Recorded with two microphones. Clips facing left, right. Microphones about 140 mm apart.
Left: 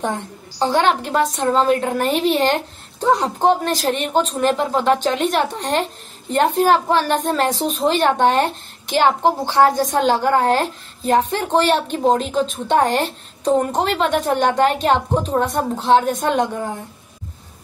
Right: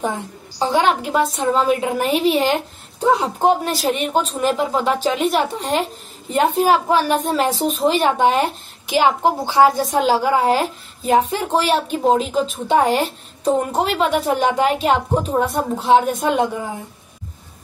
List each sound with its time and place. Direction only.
0.6 s a woman's voice: 5° right (ahead or behind)